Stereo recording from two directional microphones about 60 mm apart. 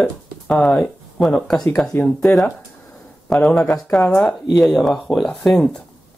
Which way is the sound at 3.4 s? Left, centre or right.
Centre.